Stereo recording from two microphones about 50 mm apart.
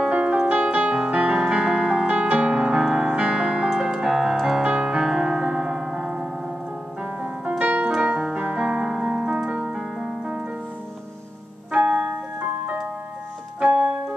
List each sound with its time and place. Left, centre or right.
0.0 s piano: right
7.2 s piano: right
8.0 s keyboard: right
11.7 s music: right
13.6 s keyboard: right